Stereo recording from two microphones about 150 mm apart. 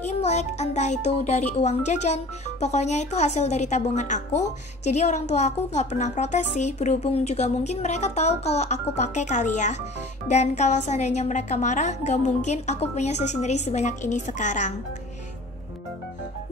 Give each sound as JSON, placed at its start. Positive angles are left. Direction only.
{"t": 0.2, "sound": "a woman's voice", "side_deg": 50}